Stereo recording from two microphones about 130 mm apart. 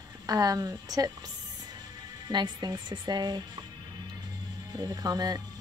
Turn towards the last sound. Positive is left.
turn(degrees=-30)  # may be behind; listen again after turning